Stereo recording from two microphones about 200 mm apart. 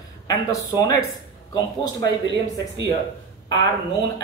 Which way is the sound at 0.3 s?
15° left (ahead or behind).